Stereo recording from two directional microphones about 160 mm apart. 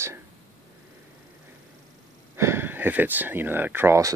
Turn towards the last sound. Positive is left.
turn(degrees=-20)  # may be behind; listen again after turning